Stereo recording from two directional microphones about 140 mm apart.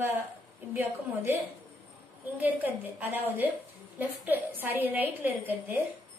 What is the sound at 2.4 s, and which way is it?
A woman's voice, 10° right (ahead or behind).